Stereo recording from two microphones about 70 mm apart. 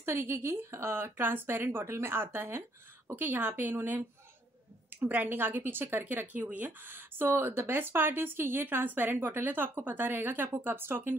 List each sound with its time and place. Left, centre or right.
0.0 s a woman's voice: right
5.0 s a woman's voice: right